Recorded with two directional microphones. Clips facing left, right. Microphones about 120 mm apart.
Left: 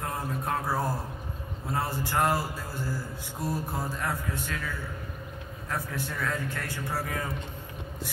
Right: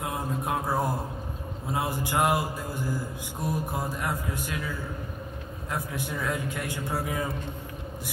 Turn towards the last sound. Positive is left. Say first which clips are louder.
# right 2 dB
turn(degrees=-15)  # may be behind; listen again after turning